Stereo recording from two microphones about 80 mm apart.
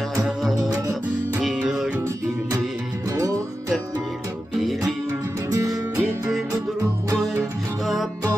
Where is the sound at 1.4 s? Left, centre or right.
Centre.